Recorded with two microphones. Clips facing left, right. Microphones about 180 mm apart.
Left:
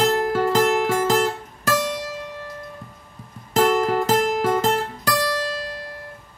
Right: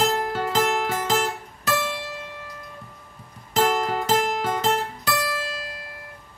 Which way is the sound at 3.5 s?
50° left (ahead or behind).